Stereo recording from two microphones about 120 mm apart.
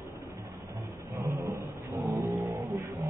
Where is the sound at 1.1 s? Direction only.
25° right (ahead or behind).